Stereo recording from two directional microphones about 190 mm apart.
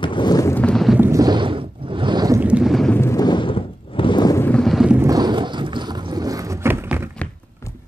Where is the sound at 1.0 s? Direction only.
15° right (ahead or behind).